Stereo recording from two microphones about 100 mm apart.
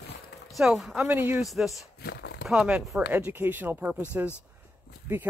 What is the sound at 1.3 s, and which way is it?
Speech, centre (ahead or behind).